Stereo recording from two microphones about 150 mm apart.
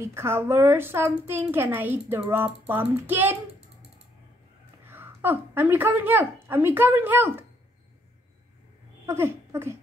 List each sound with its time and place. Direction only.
0.0 s a woman's voice: 15° right (ahead or behind)
4.8 s speech: 15° right (ahead or behind)
9.0 s a sound: 15° right (ahead or behind)